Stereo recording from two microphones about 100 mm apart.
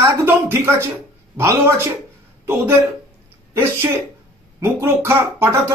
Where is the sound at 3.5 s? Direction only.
25° right (ahead or behind).